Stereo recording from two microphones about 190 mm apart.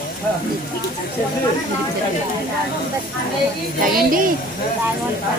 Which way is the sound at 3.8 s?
45° right (ahead or behind).